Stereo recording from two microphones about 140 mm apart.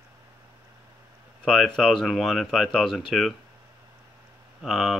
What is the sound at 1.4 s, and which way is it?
Speech, centre (ahead or behind).